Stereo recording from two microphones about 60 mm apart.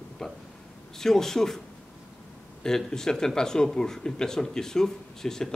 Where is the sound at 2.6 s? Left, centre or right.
Centre.